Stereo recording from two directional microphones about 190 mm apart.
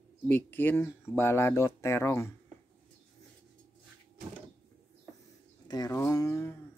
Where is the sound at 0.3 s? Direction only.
10° left (ahead or behind).